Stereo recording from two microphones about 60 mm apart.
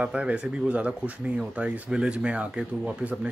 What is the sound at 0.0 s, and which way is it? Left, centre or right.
Speech, centre.